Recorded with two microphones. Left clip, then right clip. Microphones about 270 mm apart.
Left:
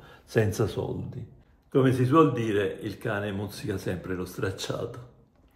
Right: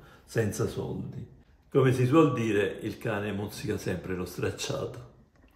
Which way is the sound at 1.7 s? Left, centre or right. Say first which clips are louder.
Left 1 dB; centre.